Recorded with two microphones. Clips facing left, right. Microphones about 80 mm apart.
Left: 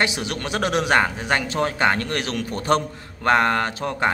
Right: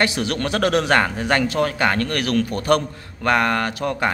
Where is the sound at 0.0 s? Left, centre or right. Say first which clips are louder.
Right 3 dB; centre.